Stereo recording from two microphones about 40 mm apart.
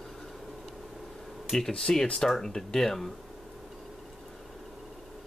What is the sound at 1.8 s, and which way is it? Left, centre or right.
Speech, centre.